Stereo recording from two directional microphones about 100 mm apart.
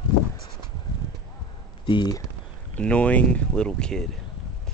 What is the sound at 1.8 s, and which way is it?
Speech, 50° left (ahead or behind).